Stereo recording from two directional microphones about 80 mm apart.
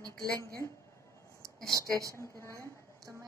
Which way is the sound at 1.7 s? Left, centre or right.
Right.